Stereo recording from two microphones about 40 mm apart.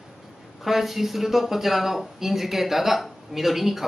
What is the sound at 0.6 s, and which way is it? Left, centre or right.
Speech, centre.